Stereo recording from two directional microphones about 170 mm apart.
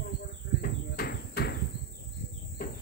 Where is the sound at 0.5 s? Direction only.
60° left (ahead or behind).